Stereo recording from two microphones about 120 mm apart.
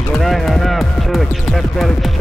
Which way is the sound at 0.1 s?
Centre (ahead or behind).